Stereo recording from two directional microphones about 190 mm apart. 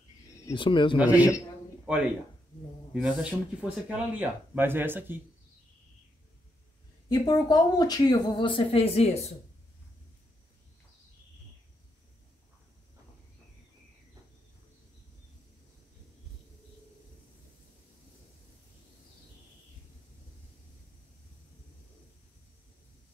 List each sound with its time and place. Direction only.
0.5 s speech: 25° left (ahead or behind)
0.9 s speech: 10° right (ahead or behind)
2.9 s speech: 5° right (ahead or behind)
7.1 s speech: 20° left (ahead or behind)